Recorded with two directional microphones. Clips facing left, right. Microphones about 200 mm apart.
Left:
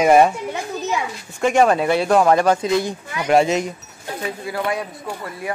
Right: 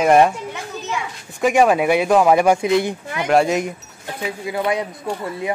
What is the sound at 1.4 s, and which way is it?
A man's voice, 5° right (ahead or behind).